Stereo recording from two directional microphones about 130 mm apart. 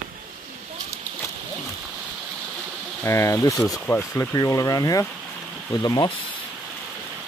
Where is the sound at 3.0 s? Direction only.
20° left (ahead or behind).